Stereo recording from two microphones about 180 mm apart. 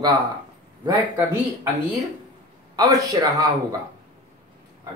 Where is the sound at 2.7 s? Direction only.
20° right (ahead or behind).